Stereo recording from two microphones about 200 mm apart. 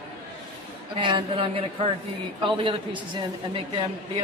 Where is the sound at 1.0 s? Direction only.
25° right (ahead or behind).